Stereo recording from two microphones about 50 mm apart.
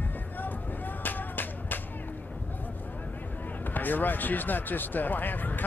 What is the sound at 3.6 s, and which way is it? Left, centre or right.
Speech, left.